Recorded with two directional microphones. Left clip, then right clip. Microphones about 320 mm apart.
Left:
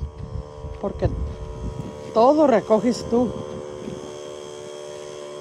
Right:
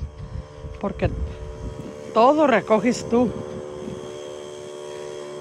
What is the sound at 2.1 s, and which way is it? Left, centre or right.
Speech, centre.